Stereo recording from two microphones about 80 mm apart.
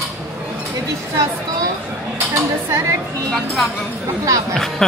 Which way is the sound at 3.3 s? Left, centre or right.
Centre.